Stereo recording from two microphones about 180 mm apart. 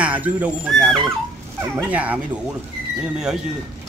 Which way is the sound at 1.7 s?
10° right (ahead or behind).